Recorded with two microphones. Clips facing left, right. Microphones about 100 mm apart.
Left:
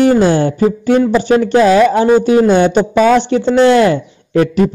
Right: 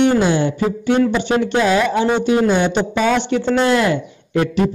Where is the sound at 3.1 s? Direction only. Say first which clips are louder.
Left 6 dB; 35° left (ahead or behind).